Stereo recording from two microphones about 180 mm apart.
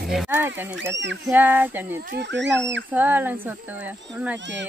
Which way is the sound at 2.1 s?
80° right.